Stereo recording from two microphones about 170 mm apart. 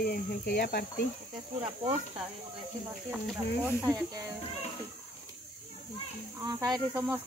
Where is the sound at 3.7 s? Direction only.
15° right (ahead or behind).